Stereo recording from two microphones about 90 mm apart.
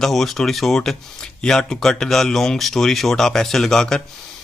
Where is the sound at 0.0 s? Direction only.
5° left (ahead or behind).